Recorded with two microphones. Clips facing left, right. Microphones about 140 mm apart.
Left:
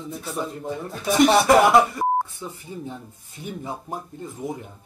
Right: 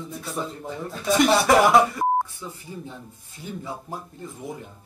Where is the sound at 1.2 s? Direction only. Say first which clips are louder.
Left 3 dB; centre (ahead or behind).